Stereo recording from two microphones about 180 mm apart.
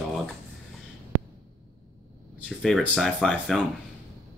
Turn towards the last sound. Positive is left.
turn(degrees=0)  # may be behind; listen again after turning